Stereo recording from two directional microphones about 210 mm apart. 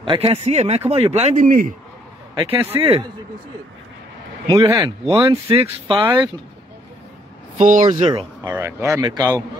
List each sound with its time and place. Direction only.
0.0 s speech: 25° right (ahead or behind)
2.5 s speech: 10° right (ahead or behind)
4.5 s speech: 20° right (ahead or behind)
7.5 s speech: 40° right (ahead or behind)
8.1 s speech: 15° right (ahead or behind)